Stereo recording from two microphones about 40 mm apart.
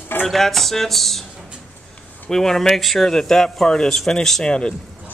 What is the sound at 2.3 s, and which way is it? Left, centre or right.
Speech, centre.